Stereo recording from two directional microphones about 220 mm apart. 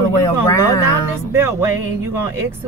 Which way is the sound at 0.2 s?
15° left (ahead or behind).